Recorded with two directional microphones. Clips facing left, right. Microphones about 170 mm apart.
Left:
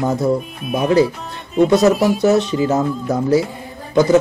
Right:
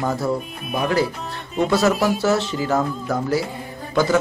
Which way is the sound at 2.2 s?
20° left (ahead or behind).